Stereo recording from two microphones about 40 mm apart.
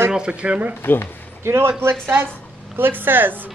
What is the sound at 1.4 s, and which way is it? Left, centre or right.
Speech, right.